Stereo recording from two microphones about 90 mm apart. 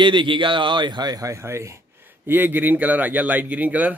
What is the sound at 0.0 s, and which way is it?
Speech, 65° right (ahead or behind).